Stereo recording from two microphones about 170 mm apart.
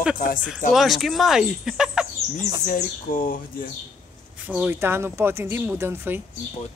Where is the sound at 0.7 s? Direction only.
Centre (ahead or behind).